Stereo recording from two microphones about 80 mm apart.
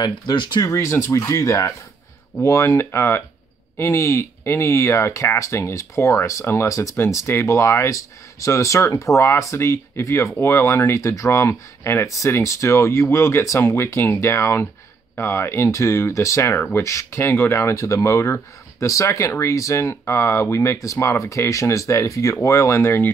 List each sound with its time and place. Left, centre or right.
0.3 s speech: left
0.7 s speech: left